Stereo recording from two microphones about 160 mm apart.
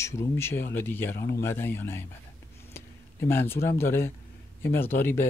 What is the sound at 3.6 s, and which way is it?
Speech, 15° left (ahead or behind).